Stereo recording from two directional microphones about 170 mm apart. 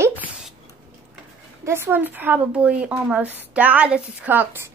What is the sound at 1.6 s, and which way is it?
A woman's voice, 15° right (ahead or behind).